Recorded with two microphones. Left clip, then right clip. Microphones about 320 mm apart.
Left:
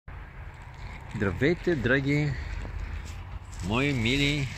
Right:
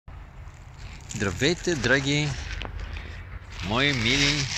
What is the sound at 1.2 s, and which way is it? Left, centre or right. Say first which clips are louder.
Speech: right 1 dB; centre.